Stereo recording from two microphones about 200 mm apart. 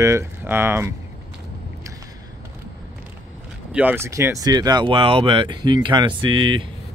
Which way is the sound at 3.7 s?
10° right (ahead or behind).